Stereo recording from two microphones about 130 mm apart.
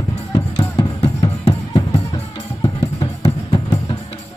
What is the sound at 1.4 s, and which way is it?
Music, 50° left (ahead or behind).